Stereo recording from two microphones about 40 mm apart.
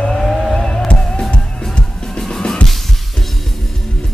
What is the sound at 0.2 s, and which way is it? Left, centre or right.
Vehicle, centre.